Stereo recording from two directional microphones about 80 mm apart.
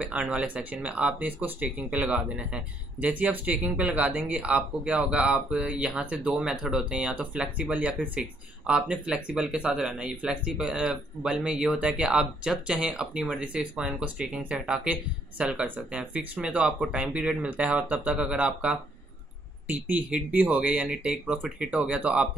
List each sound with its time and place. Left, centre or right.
0.0 s speech: centre